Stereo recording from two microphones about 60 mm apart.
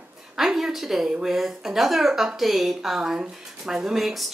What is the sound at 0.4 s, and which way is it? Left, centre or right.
Speech, centre.